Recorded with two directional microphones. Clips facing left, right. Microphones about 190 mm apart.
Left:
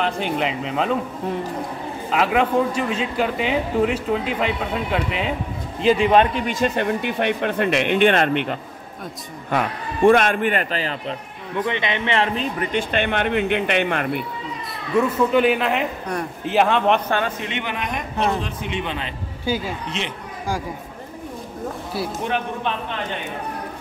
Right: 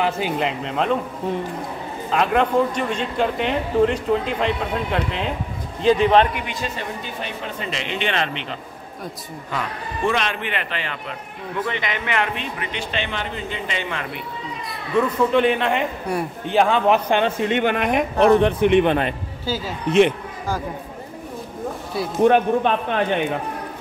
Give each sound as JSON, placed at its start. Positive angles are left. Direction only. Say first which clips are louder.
{"t": 0.0, "sound": "speech", "louder": "right 1 dB", "side_deg": 0}
{"t": 2.1, "sound": "a man's voice", "louder": "even", "side_deg": 5}
{"t": 6.3, "sound": "a man's voice", "louder": "left 7 dB", "side_deg": 45}
{"t": 6.8, "sound": "a man's voice", "louder": "left 8 dB", "side_deg": 65}
{"t": 11.5, "sound": "a man's voice", "louder": "left 3 dB", "side_deg": 20}
{"t": 15.0, "sound": "speech", "louder": "even", "side_deg": 5}
{"t": 17.5, "sound": "a man's voice", "louder": "right 8 dB", "side_deg": -50}
{"t": 19.4, "sound": "speech", "louder": "left 2 dB", "side_deg": 15}
{"t": 19.9, "sound": "a man's voice", "louder": "right 13 dB", "side_deg": -55}
{"t": 22.2, "sound": "a man's voice", "louder": "right 13 dB", "side_deg": -50}